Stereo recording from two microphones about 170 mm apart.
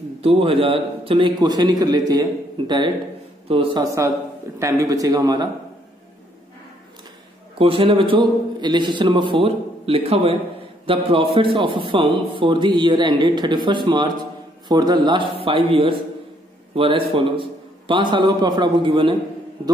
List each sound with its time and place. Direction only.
0.2 s a man's voice: 35° right (ahead or behind)
3.8 s a man's voice: 15° right (ahead or behind)
7.5 s a man's voice: 30° right (ahead or behind)